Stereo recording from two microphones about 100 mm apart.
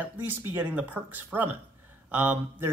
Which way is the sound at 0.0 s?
20° right (ahead or behind).